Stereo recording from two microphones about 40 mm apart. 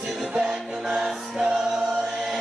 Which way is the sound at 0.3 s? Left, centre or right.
Right.